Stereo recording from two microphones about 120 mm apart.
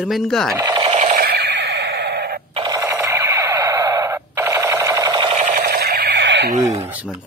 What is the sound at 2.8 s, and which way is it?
Alarm clock, 25° right (ahead or behind).